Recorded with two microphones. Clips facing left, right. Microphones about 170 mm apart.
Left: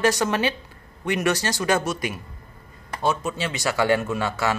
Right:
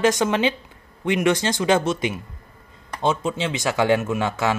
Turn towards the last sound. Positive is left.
turn(degrees=-20)  # may be behind; listen again after turning